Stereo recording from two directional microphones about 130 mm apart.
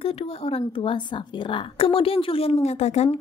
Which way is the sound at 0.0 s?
50° left (ahead or behind).